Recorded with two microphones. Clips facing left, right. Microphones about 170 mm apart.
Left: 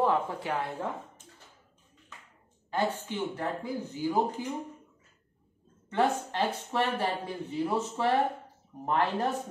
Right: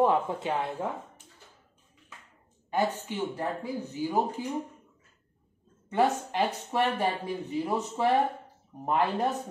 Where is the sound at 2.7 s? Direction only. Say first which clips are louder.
Right 2 dB; 10° right (ahead or behind).